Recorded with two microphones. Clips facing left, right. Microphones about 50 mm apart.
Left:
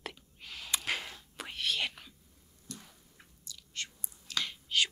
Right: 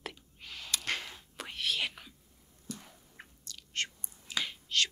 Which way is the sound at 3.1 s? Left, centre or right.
Right.